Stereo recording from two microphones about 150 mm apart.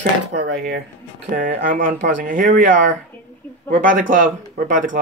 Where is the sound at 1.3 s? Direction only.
65° right (ahead or behind).